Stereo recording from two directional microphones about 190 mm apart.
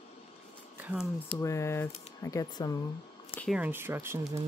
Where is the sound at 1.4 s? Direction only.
15° left (ahead or behind).